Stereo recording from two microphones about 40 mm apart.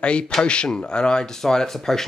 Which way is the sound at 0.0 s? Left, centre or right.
Left.